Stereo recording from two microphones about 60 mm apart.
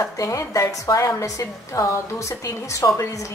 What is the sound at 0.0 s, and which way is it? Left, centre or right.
A woman's voice, left.